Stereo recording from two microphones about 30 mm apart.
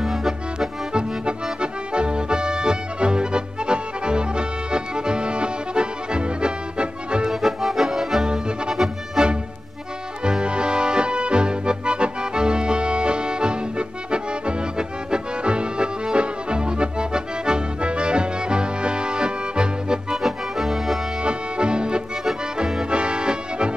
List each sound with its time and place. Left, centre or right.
0.0 s accordion: centre
0.9 s accordion: right
7.2 s accordion: centre
8.3 s accordion: right
8.7 s music: right
20.1 s music: centre
21.2 s music: right
22.8 s accordion: right